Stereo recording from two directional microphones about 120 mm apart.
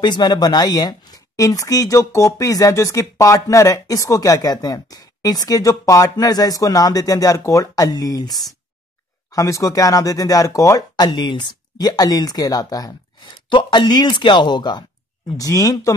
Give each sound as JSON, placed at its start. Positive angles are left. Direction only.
{"t": 0.0, "sound": "speech", "side_deg": 40}
{"t": 11.1, "sound": "speech", "side_deg": 40}